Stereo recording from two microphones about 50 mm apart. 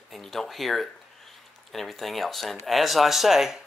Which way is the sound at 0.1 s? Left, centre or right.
Centre.